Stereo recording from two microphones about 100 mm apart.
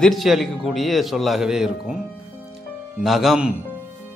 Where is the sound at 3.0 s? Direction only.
Centre (ahead or behind).